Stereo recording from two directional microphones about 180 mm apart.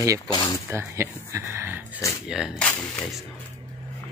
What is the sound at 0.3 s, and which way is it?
Speech, 25° left (ahead or behind).